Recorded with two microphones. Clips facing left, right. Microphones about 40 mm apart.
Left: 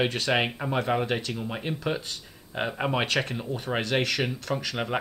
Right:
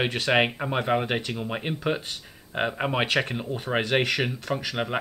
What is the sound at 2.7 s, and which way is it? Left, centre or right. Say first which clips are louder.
Speech: even; centre.